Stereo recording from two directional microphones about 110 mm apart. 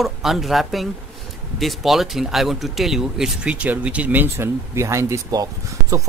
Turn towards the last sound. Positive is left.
turn(degrees=-30)  # may be behind; listen again after turning